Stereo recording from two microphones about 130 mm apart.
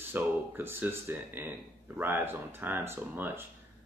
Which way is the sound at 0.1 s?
15° right (ahead or behind).